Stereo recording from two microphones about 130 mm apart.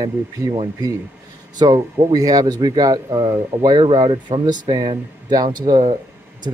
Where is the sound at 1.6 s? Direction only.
30° right (ahead or behind).